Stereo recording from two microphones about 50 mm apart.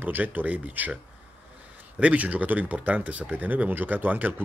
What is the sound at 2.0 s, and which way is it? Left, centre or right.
Speech, right.